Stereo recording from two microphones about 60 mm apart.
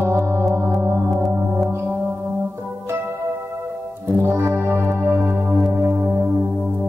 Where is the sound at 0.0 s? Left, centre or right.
Right.